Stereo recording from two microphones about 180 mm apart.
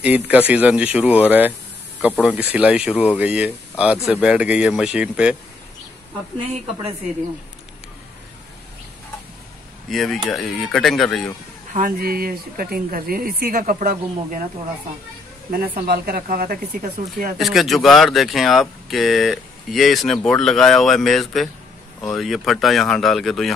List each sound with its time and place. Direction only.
0.0 s speech: 10° right (ahead or behind)
2.5 s speech: 5° right (ahead or behind)
9.8 s speech: centre (ahead or behind)
11.7 s speech: 50° right (ahead or behind)
15.5 s speech: 55° right (ahead or behind)
17.4 s speech: centre (ahead or behind)